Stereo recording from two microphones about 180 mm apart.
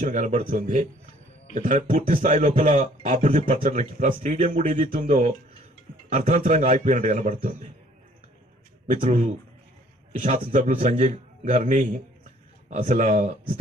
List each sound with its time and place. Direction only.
0.0 s a man's voice: 40° right (ahead or behind)
8.8 s a man's voice: 45° right (ahead or behind)